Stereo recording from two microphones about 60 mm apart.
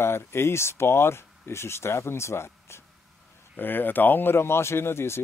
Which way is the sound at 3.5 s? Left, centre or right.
Left.